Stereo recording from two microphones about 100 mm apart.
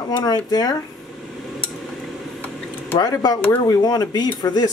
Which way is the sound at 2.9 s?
40° left (ahead or behind).